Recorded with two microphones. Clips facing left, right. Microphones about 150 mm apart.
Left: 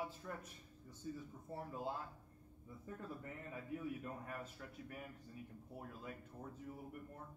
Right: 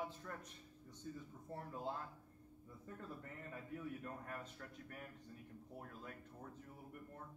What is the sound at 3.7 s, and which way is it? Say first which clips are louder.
A man's voice: left 3 dB; 5° left (ahead or behind).